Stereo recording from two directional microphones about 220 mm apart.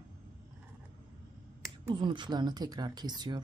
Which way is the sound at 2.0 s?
20° right (ahead or behind).